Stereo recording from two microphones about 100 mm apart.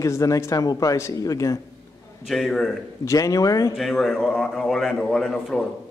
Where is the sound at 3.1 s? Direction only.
35° left (ahead or behind).